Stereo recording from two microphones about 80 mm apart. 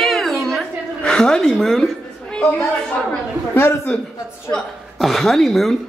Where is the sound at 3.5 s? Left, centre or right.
Left.